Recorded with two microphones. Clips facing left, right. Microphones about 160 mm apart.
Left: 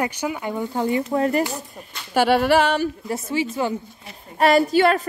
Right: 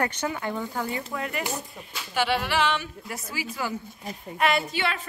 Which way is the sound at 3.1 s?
25° left (ahead or behind).